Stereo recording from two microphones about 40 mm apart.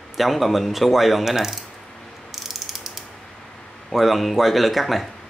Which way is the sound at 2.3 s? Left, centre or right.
Centre.